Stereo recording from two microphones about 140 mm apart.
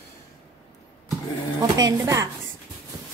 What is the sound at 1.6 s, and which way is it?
Speech, 25° right (ahead or behind).